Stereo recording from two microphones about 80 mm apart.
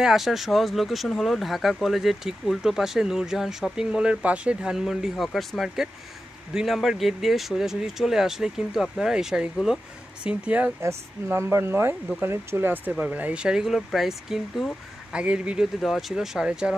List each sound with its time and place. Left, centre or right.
0.0 s speech: centre